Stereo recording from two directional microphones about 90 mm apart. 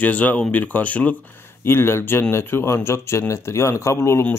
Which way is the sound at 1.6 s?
25° left (ahead or behind).